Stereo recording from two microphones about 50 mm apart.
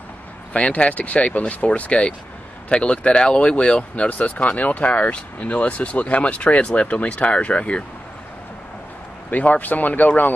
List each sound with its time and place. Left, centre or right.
0.5 s speech: left
9.3 s speech: left